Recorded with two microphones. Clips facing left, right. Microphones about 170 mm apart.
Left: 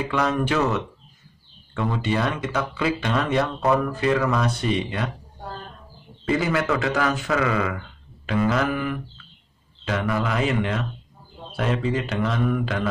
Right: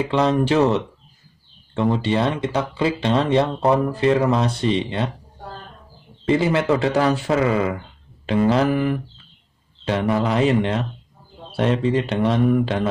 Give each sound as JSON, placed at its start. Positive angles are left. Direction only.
{"t": 0.1, "sound": "speech", "side_deg": -30}
{"t": 6.2, "sound": "speech", "side_deg": -30}